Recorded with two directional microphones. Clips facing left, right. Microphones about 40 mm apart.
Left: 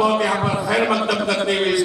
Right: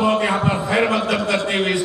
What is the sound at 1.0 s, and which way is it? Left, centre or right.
Speech, right.